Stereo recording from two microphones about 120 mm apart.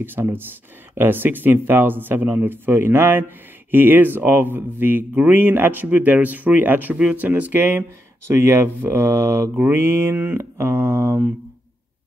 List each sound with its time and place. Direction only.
0.0 s speech: 15° right (ahead or behind)
8.3 s mantra: 20° right (ahead or behind)